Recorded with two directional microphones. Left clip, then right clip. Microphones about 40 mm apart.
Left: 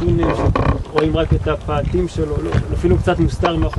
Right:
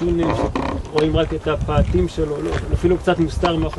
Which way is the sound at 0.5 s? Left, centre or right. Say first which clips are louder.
Left 3 dB; centre.